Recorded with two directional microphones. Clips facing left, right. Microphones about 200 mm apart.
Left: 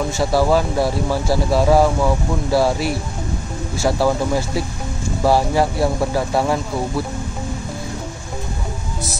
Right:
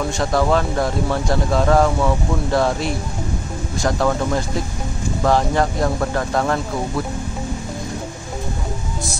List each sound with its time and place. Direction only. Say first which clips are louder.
0.2 s speech: left 2 dB; 5° left (ahead or behind)